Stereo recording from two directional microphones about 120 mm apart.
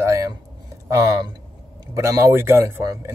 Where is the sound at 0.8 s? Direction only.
30° right (ahead or behind).